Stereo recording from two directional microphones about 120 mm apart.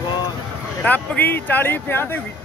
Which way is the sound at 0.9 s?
15° left (ahead or behind).